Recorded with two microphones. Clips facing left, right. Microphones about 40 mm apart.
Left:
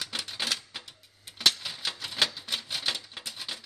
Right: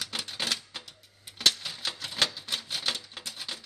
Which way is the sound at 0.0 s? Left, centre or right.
Centre.